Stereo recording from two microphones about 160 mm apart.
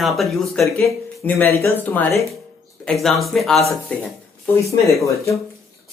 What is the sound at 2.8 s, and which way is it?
Speech, centre (ahead or behind).